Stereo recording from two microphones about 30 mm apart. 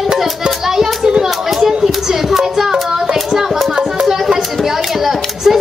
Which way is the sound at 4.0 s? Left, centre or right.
Centre.